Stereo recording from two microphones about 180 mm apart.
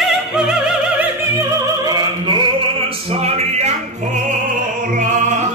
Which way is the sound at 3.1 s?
35° right (ahead or behind).